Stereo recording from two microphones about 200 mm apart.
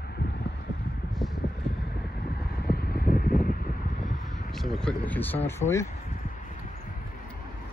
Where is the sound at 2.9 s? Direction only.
45° left (ahead or behind).